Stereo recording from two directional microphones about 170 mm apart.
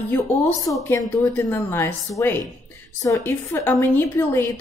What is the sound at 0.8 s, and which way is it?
A woman's voice, 15° left (ahead or behind).